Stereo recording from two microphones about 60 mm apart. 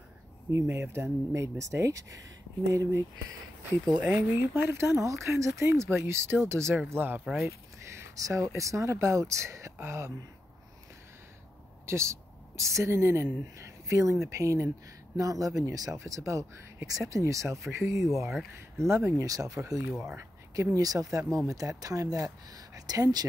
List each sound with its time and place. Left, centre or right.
0.5 s speech: right
1.3 s speech: right
2.9 s speech: right
6.9 s speech: right
7.4 s speech: right
11.8 s a sound: right
12.9 s speech: right
15.1 s speech: right
16.1 s speech: right
19.2 s speech: right
19.8 s speech: right
20.2 s speech: right